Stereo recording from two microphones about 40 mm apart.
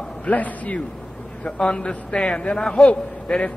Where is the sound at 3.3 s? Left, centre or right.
Left.